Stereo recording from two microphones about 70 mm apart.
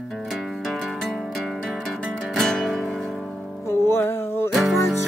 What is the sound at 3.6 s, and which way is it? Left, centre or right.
Music, left.